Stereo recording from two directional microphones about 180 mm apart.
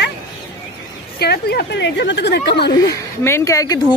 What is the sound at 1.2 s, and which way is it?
A woman's voice, 65° left (ahead or behind).